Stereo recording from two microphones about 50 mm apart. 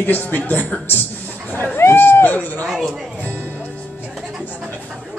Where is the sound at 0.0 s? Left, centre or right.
Left.